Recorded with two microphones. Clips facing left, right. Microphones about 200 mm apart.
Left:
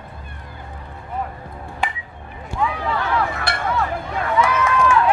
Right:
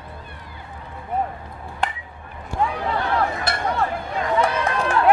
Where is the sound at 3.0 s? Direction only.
30° right (ahead or behind).